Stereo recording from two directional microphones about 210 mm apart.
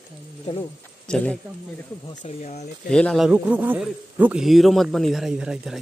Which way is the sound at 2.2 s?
35° left (ahead or behind).